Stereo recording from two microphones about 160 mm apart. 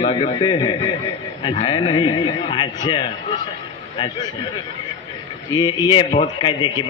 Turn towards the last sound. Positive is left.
turn(degrees=30)  # may be behind; listen again after turning